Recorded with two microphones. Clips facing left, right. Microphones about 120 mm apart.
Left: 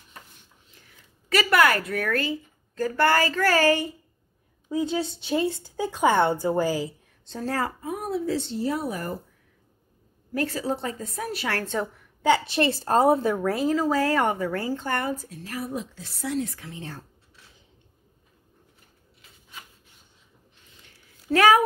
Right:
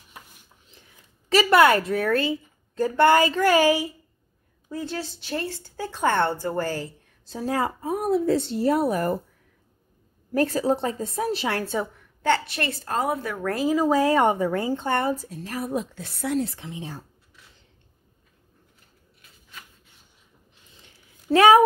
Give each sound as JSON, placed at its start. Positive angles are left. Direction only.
{"t": 1.3, "sound": "a woman's voice", "side_deg": -25}
{"t": 4.6, "sound": "speech", "side_deg": 15}
{"t": 7.2, "sound": "a woman's voice", "side_deg": -10}
{"t": 7.8, "sound": "speech", "side_deg": -45}
{"t": 10.3, "sound": "a woman's voice", "side_deg": -40}
{"t": 10.8, "sound": "a woman's voice", "side_deg": -30}
{"t": 11.6, "sound": "a woman's voice", "side_deg": -5}
{"t": 12.4, "sound": "a woman's voice", "side_deg": 25}
{"t": 13.5, "sound": "a woman's voice", "side_deg": 0}
{"t": 13.7, "sound": "a woman's voice", "side_deg": -15}
{"t": 16.3, "sound": "a woman's voice", "side_deg": -30}
{"t": 16.6, "sound": "a woman's voice", "side_deg": -15}
{"t": 20.8, "sound": "a sound", "side_deg": -25}